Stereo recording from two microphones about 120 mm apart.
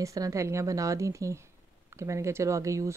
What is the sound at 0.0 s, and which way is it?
Speech, 25° right (ahead or behind).